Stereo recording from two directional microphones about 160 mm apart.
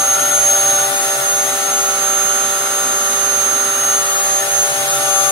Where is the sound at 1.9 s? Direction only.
15° right (ahead or behind).